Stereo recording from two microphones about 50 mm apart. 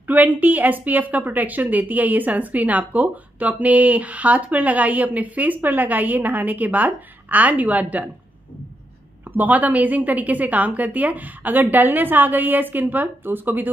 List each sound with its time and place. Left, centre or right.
0.0 s a woman's voice: right
9.4 s a woman's voice: right